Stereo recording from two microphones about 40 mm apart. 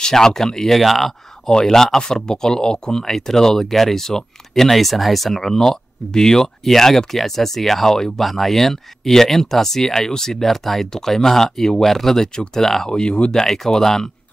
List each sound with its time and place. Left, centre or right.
0.0 s speech: centre
1.5 s speech: centre
5.4 s speech: centre
12.9 s speech: left